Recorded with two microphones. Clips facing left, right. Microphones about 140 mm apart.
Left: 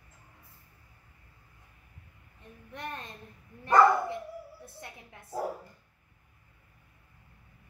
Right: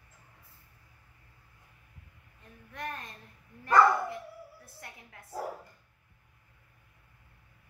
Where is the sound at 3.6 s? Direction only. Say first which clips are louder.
Left 2 dB; 25° left (ahead or behind).